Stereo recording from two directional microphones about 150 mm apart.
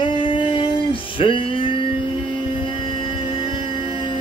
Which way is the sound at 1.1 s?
35° left (ahead or behind).